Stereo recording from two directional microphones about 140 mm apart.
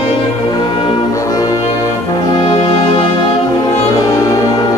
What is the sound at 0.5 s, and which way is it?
Brass instrument, 30° left (ahead or behind).